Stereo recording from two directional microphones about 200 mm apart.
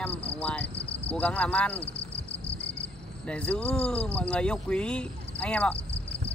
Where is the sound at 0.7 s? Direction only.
30° left (ahead or behind).